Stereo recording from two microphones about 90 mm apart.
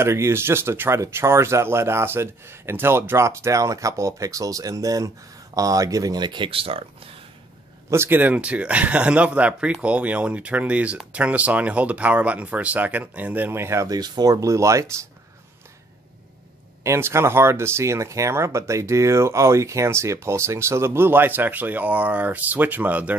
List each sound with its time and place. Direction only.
0.0 s speech: 30° right (ahead or behind); by 7.1 s 90° right
7.9 s speech: 25° right (ahead or behind)
13.9 s speech: 50° right (ahead or behind)
16.8 s speech: 30° right (ahead or behind)